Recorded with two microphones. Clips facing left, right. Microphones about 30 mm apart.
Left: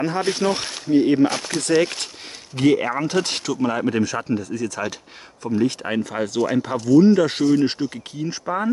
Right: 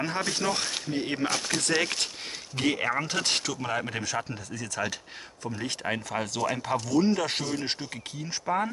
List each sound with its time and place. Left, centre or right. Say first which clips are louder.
0.2 s speech: left 7 dB; left
0.8 s speech: left 16 dB; centre